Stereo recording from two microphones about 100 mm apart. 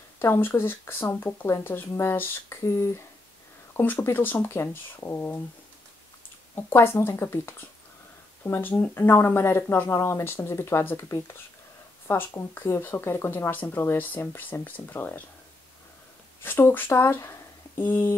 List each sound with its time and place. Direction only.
0.2 s speech: 20° left (ahead or behind)
6.5 s speech: 25° left (ahead or behind)
16.3 s speech: 25° left (ahead or behind)